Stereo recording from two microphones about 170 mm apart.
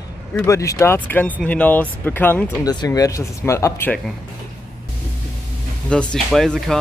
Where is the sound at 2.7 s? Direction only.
20° left (ahead or behind).